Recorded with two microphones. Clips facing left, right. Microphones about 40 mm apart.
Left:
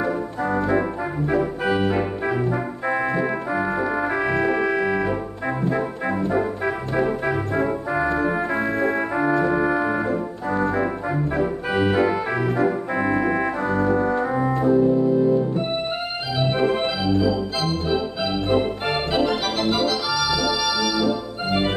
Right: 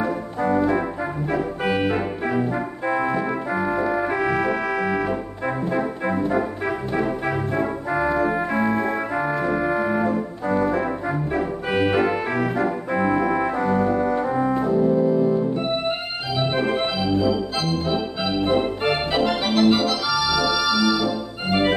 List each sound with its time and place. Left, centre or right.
0.4 s organ: centre
2.8 s organ: centre
9.1 s organ: centre
12.9 s organ: centre
13.6 s organ: centre
18.9 s organ: right
20.3 s organ: centre